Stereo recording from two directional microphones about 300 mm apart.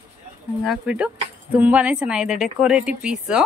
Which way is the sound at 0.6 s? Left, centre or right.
Centre.